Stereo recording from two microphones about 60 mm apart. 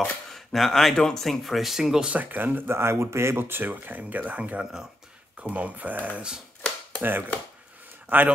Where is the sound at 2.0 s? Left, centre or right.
Right.